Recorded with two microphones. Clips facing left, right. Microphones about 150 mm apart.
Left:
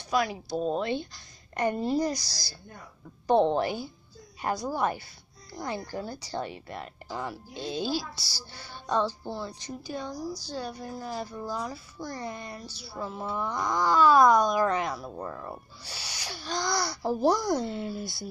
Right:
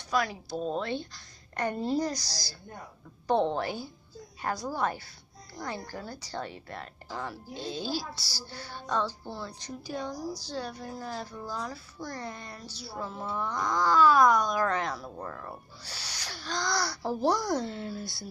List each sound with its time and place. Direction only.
0.1 s a woman's voice: 15° left (ahead or behind)
3.3 s a woman's voice: 20° left (ahead or behind)
9.8 s a woman's voice: centre (ahead or behind)